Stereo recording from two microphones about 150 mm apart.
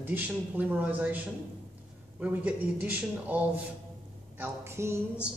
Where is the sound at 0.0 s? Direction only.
15° right (ahead or behind).